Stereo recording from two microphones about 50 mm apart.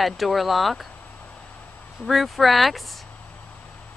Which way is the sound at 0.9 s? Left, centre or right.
Left.